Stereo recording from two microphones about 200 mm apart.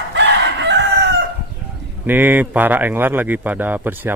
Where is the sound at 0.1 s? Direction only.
60° right (ahead or behind).